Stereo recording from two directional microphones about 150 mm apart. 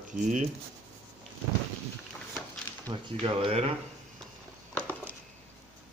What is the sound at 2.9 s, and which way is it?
Speech, 30° right (ahead or behind).